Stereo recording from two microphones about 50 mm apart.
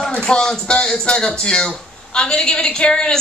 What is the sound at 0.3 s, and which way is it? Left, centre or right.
A woman's voice, centre.